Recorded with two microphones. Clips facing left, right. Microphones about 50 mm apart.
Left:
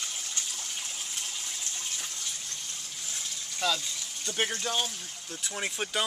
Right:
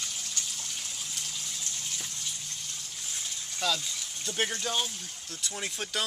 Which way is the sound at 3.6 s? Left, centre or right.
Centre.